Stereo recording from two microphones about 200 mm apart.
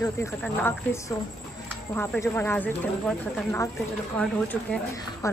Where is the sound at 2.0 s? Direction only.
10° left (ahead or behind).